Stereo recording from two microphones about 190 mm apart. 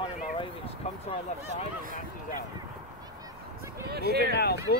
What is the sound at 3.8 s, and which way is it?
Speech, 55° right (ahead or behind).